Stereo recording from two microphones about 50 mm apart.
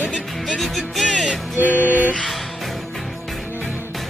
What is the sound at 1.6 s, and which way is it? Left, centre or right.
Music, right.